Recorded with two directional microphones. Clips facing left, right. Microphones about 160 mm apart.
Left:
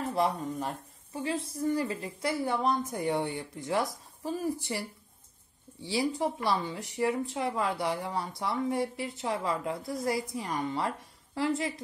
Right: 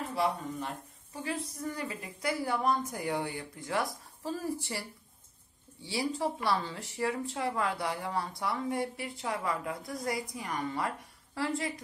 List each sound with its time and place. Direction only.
0.1 s speech: 40° left (ahead or behind)
1.1 s speech: 30° left (ahead or behind)